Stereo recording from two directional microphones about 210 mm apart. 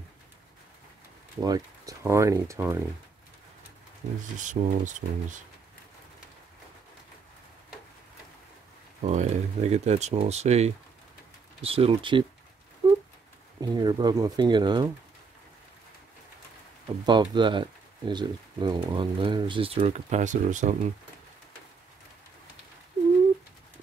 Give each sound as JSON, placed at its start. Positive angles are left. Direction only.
{"t": 1.4, "sound": "speech", "side_deg": -15}
{"t": 4.4, "sound": "speech", "side_deg": -35}
{"t": 9.0, "sound": "speech", "side_deg": -35}
{"t": 12.8, "sound": "a sound", "side_deg": -20}
{"t": 13.6, "sound": "speech", "side_deg": -20}
{"t": 17.0, "sound": "speech", "side_deg": -20}